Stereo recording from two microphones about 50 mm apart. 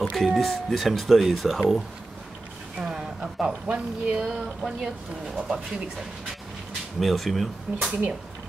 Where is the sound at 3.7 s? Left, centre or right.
Centre.